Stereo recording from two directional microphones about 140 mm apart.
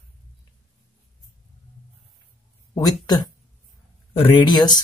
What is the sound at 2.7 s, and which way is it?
Speech, 30° left (ahead or behind).